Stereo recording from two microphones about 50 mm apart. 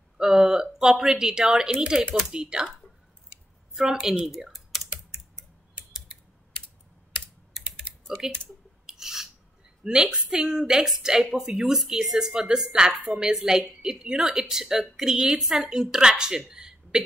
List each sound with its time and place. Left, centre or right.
0.2 s a woman's voice: centre
3.7 s a woman's voice: centre
4.5 s typing: centre
8.2 s a woman's voice: centre
8.8 s a sound: centre
10.1 s a woman's voice: centre